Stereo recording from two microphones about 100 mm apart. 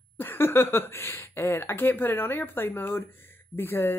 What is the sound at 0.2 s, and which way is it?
Speech, 25° left (ahead or behind).